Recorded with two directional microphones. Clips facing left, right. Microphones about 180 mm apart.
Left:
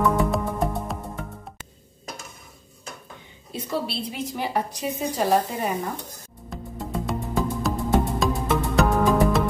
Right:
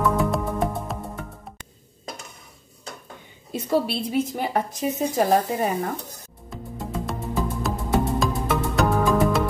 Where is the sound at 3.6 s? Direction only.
50° right (ahead or behind).